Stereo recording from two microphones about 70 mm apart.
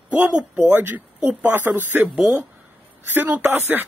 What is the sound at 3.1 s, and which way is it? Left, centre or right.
Speech, right.